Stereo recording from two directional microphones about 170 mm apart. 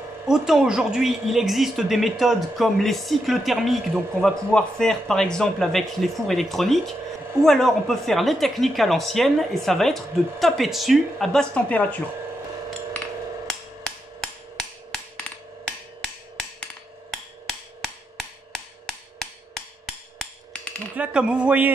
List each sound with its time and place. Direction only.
0.3 s a woman's voice: 5° right (ahead or behind)
13.5 s hammer: 5° left (ahead or behind)
17.1 s wood block: centre (ahead or behind)
20.9 s speech: 5° right (ahead or behind)